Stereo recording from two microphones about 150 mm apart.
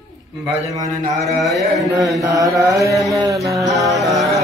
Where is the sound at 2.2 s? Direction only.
20° right (ahead or behind).